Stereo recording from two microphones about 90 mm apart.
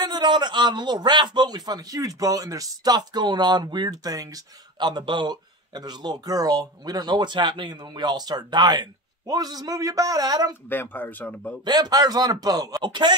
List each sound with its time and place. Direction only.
0.0 s a man's voice: 55° right (ahead or behind)
4.7 s a man's voice: 55° right (ahead or behind)
10.7 s speech: 20° left (ahead or behind)
11.6 s a man's voice: 50° right (ahead or behind)